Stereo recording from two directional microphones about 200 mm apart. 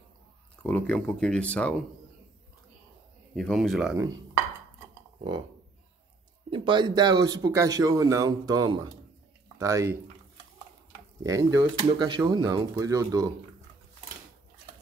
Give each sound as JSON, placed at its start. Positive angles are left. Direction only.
{"t": 0.6, "sound": "speech", "side_deg": 5}
{"t": 3.3, "sound": "speech", "side_deg": 0}
{"t": 6.5, "sound": "speech", "side_deg": -25}
{"t": 11.2, "sound": "speech", "side_deg": -15}